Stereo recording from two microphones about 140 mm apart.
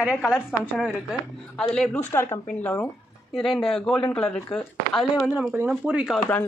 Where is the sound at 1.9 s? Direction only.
15° left (ahead or behind); by 5.5 s centre (ahead or behind).